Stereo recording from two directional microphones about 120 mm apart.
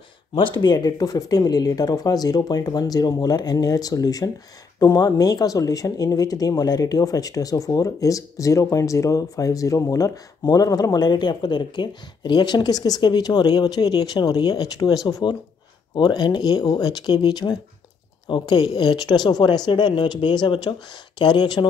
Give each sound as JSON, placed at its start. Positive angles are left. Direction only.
{"t": 0.3, "sound": "speech", "side_deg": 40}